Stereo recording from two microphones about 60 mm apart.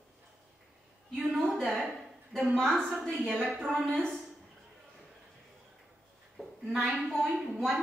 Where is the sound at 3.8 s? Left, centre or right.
Centre.